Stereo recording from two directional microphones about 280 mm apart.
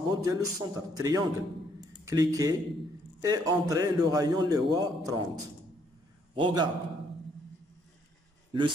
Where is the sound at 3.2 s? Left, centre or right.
Centre.